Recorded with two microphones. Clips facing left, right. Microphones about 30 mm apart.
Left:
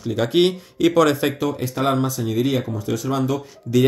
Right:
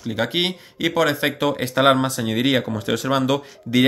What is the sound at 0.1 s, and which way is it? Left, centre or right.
Speech, centre.